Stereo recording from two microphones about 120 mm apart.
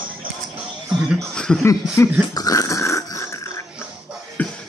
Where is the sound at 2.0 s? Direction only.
20° left (ahead or behind).